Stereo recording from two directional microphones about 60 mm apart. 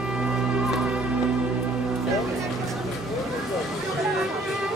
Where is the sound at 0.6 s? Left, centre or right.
Centre.